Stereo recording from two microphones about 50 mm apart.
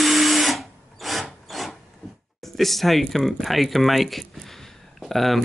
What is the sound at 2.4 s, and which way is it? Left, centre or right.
Speech, centre.